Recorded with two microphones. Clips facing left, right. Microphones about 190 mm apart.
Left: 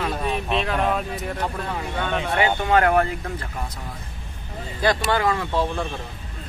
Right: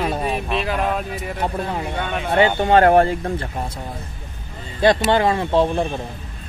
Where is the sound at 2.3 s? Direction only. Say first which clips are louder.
Right 6 dB; 30° right (ahead or behind).